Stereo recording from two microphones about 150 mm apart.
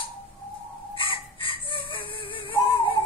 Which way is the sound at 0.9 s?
35° left (ahead or behind).